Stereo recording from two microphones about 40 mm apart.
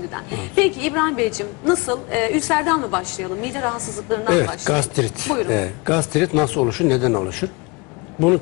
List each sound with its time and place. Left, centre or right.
0.1 s a woman's voice: centre